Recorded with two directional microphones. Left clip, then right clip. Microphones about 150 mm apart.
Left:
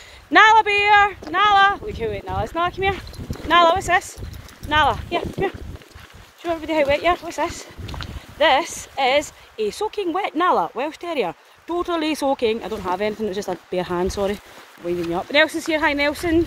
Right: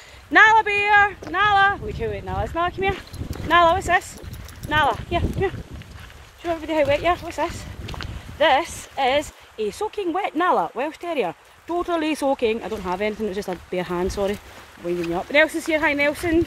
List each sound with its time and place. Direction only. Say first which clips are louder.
0.3 s speech: left 2 dB; 40° left (ahead or behind); by 16.3 s 10° left (ahead or behind)